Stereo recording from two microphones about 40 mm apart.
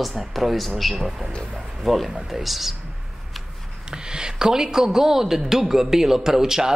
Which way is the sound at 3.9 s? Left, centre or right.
Centre.